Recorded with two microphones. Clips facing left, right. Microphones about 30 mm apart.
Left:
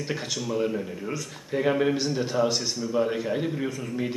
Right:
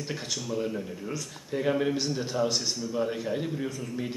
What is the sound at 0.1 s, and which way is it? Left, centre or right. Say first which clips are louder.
Speech: left 3 dB; centre.